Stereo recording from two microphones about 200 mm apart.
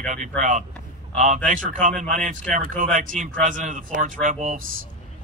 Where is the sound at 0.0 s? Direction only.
40° right (ahead or behind).